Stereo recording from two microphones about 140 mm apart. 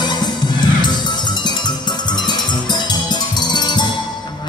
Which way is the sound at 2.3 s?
30° left (ahead or behind).